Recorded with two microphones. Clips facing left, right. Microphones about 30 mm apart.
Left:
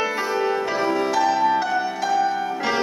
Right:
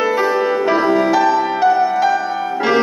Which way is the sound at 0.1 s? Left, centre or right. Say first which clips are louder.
Right 6 dB; centre.